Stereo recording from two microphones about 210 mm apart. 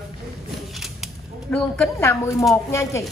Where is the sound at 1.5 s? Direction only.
Centre (ahead or behind).